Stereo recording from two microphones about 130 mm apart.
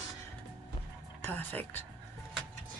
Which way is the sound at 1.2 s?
15° left (ahead or behind).